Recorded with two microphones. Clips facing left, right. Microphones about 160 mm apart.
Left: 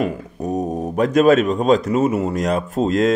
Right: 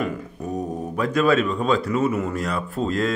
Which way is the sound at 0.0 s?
40° left (ahead or behind).